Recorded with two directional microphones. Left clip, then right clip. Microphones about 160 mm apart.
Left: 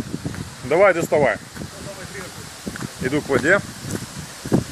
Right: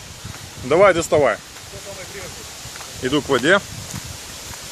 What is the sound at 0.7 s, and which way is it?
Speech, 20° right (ahead or behind).